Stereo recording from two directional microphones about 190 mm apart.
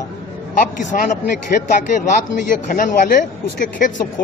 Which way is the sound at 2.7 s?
45° left (ahead or behind).